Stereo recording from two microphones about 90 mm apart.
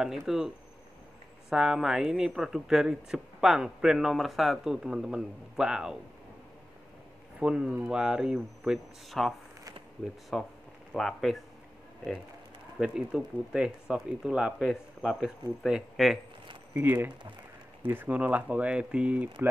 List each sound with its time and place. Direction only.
0.3 s speech: 5° right (ahead or behind)
1.5 s speech: 5° right (ahead or behind)
7.3 s speech: 10° right (ahead or behind)
10.3 s speech: 5° left (ahead or behind)
12.7 s speech: 5° right (ahead or behind)
16.7 s speech: 20° right (ahead or behind)